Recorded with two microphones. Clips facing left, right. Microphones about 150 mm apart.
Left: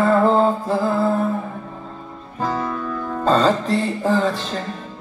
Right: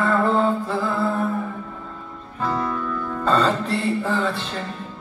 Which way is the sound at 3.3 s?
35° left (ahead or behind).